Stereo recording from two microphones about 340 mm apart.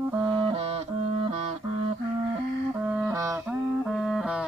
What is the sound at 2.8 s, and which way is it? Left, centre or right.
Music, centre.